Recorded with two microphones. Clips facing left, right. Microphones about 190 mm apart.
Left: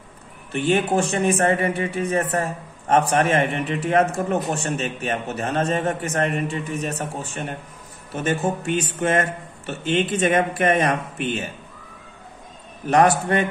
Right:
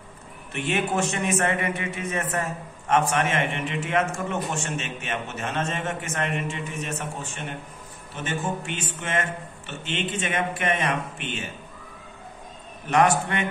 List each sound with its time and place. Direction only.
0.5 s a man's voice: 35° left (ahead or behind)
12.9 s a man's voice: 40° left (ahead or behind)